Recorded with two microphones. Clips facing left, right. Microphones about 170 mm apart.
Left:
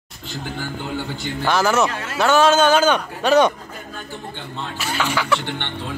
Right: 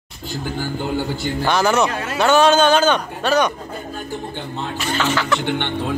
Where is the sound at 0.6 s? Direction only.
40° right (ahead or behind).